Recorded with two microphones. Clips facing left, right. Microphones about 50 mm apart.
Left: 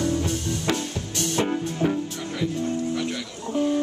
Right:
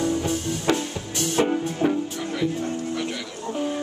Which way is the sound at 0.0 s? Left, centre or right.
Centre.